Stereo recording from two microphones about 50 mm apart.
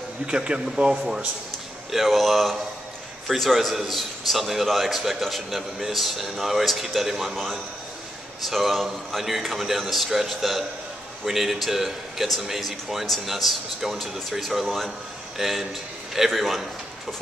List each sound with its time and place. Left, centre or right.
0.3 s a man's voice: centre
1.9 s a man's voice: centre